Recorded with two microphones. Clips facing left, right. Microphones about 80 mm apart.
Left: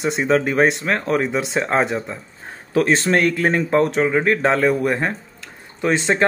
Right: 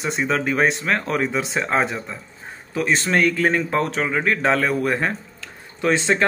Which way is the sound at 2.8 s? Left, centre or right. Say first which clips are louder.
Right 1 dB; left.